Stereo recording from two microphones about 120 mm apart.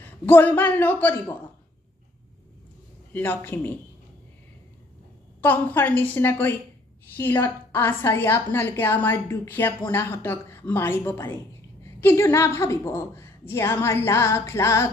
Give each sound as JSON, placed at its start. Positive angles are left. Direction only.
{"t": 0.0, "sound": "a woman's voice", "side_deg": 15}
{"t": 3.1, "sound": "a woman's voice", "side_deg": 15}
{"t": 5.4, "sound": "a woman's voice", "side_deg": 15}